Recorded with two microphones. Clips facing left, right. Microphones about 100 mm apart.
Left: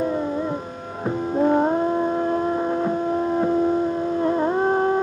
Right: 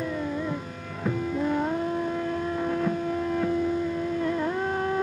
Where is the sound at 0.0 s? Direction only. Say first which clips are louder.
Left 6 dB; 35° left (ahead or behind).